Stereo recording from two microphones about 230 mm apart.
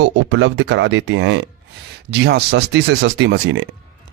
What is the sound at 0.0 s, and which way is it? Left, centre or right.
Speech, right.